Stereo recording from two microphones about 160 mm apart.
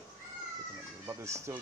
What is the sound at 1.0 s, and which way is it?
Speech, 15° right (ahead or behind).